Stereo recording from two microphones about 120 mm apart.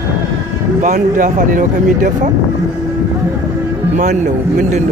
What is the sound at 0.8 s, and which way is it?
Speech, 90° right.